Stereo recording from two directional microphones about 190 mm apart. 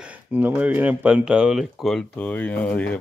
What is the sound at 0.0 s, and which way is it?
Speech, 10° right (ahead or behind).